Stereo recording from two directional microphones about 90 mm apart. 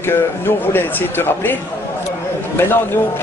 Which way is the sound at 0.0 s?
25° left (ahead or behind).